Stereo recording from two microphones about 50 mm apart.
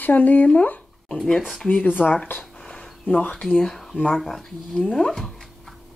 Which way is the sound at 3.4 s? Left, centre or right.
Centre.